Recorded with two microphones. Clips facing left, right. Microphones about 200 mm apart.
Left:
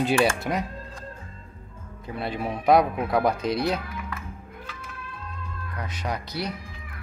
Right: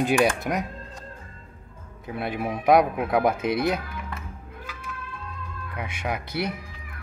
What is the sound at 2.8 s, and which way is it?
Speech, centre (ahead or behind).